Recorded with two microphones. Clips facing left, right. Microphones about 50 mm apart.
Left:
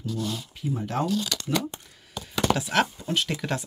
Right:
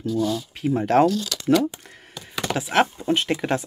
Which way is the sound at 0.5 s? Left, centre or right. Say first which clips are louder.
Right 11 dB; right.